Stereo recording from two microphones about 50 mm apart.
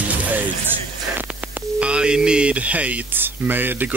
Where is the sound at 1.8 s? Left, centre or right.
Right.